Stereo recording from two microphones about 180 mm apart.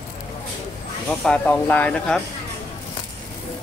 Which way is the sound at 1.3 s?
10° left (ahead or behind).